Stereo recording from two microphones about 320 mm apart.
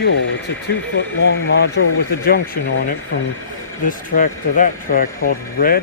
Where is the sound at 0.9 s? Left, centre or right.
Left.